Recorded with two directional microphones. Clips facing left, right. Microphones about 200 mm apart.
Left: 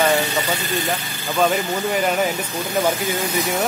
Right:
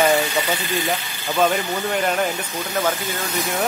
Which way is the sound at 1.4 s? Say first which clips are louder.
Left 1 dB; centre (ahead or behind).